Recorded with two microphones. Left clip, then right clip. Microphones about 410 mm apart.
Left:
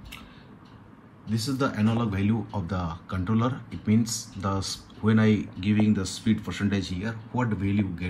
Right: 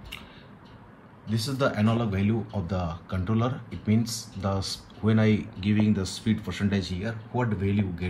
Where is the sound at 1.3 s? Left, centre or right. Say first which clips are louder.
Right 1 dB; centre.